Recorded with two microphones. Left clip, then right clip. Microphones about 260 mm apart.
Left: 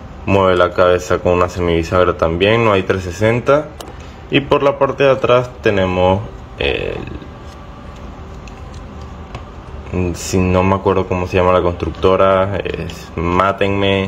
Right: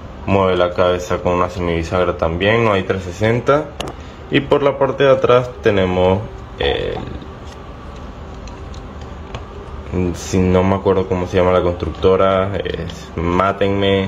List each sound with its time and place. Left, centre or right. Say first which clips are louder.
0.3 s a man's voice: left 2 dB; centre
9.9 s speech: left 1 dB; centre